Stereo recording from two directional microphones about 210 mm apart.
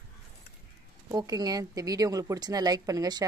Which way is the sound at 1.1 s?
15° right (ahead or behind).